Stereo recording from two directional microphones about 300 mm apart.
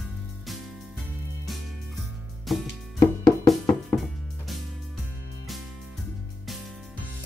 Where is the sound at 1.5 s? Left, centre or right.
Centre.